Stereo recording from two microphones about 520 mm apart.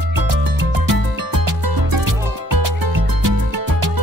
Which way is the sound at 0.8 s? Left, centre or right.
Right.